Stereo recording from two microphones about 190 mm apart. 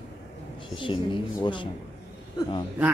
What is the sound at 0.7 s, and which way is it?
Speech, 25° left (ahead or behind).